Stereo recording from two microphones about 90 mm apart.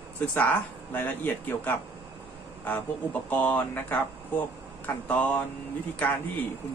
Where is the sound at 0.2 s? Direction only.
20° left (ahead or behind).